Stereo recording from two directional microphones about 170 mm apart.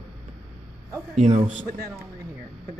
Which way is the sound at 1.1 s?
45° right (ahead or behind).